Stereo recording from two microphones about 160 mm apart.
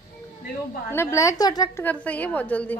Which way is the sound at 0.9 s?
15° left (ahead or behind).